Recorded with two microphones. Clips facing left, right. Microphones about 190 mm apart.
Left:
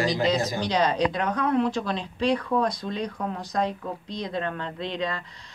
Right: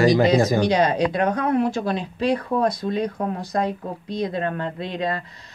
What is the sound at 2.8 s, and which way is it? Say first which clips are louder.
Speech: right 6 dB; 55° right (ahead or behind).